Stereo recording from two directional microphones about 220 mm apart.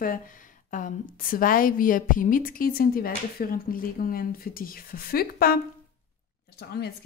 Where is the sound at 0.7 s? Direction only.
35° left (ahead or behind).